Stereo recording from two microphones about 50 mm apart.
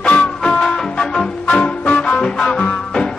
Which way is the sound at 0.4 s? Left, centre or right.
Centre.